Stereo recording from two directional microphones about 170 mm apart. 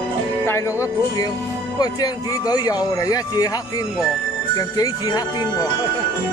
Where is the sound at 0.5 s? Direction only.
15° left (ahead or behind).